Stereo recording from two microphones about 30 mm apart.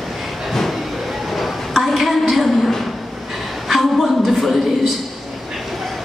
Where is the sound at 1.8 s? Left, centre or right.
Centre.